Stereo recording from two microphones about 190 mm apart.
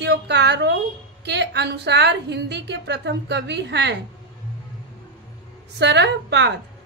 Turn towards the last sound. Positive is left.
turn(degrees=-65)  # may be behind; listen again after turning